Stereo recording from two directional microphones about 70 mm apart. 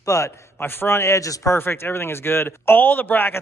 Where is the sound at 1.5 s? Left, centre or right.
Left.